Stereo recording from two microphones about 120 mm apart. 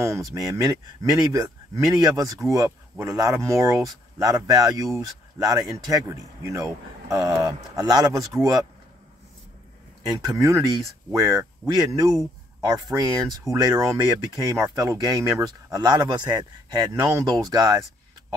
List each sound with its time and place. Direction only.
0.0 s speech: 25° right (ahead or behind)
10.0 s speech: 35° right (ahead or behind)